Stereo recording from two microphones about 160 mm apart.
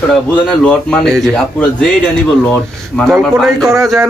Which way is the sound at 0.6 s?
5° left (ahead or behind).